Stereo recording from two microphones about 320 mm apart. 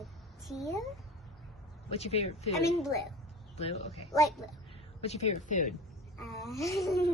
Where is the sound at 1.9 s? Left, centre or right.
Centre.